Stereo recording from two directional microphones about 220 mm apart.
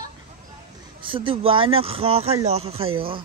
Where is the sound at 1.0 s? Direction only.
25° right (ahead or behind).